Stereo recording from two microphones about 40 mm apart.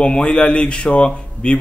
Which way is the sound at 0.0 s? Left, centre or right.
Left.